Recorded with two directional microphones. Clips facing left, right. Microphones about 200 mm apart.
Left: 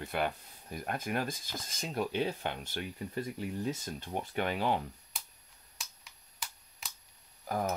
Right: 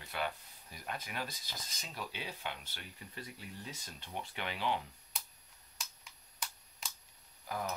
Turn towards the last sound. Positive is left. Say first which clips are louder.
# left 6 dB
turn(degrees=45)  # may be behind; listen again after turning